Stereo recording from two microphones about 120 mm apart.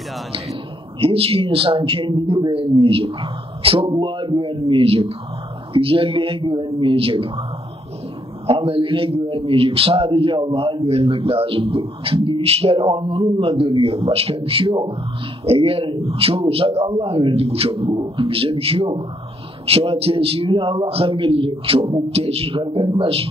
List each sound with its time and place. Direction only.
0.3 s a man's voice: 50° right (ahead or behind)
8.5 s a man's voice: 50° right (ahead or behind)